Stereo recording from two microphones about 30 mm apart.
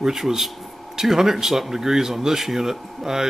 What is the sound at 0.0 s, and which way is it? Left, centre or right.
Speech, centre.